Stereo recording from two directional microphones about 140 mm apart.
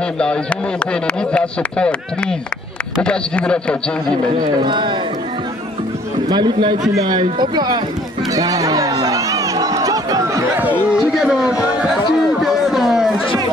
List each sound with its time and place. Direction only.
0.2 s speech: 5° left (ahead or behind)
4.6 s speech: 35° right (ahead or behind)
6.2 s speech: 30° right (ahead or behind)
9.0 s chatter: 25° right (ahead or behind)
10.9 s a man's voice: 5° right (ahead or behind)
12.4 s a sound: centre (ahead or behind)